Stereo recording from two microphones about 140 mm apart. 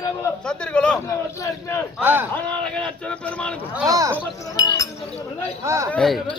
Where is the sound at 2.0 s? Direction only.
15° right (ahead or behind).